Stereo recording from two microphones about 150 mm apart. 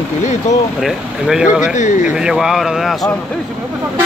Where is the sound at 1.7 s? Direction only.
55° left (ahead or behind).